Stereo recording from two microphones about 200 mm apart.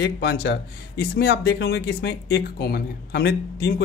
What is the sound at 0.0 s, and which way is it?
Speech, 55° left (ahead or behind).